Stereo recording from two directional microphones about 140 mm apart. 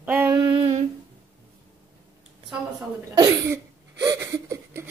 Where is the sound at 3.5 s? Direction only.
20° right (ahead or behind).